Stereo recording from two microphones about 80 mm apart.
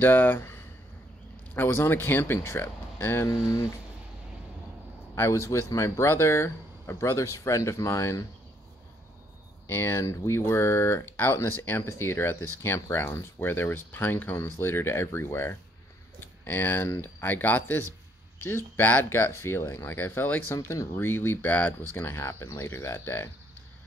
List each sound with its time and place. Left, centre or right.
0.0 s speech: left
5.1 s speech: left
9.7 s speech: left
20.5 s speech: left